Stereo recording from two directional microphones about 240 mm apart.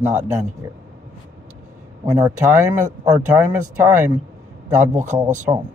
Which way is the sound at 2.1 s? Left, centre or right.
Centre.